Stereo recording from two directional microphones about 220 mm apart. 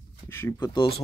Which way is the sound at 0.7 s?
25° left (ahead or behind).